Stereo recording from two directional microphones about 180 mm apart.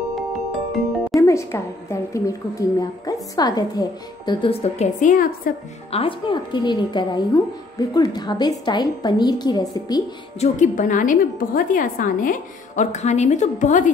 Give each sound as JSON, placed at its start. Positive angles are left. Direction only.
{"t": 1.1, "sound": "a woman's voice", "side_deg": 15}
{"t": 5.0, "sound": "a woman's voice", "side_deg": 50}
{"t": 5.9, "sound": "a woman's voice", "side_deg": 30}
{"t": 10.4, "sound": "a woman's voice", "side_deg": 45}